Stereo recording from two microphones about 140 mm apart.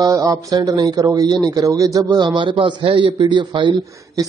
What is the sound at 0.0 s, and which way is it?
Speech, 25° right (ahead or behind).